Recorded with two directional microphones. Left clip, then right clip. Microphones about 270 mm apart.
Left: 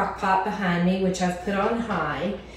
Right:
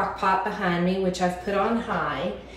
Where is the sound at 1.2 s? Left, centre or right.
Centre.